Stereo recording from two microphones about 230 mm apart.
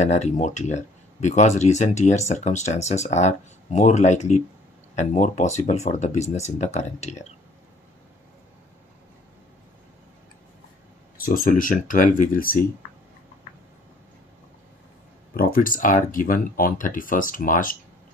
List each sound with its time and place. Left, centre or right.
0.0 s speech: left
11.1 s speech: left
15.3 s speech: left